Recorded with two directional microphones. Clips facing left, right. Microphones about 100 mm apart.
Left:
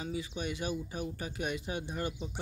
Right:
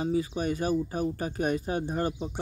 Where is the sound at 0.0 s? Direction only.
40° right (ahead or behind).